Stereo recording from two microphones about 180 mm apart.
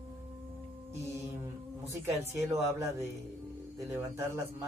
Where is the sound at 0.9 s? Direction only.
15° right (ahead or behind).